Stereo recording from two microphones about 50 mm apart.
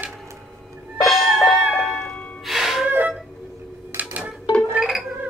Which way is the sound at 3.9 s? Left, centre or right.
Right.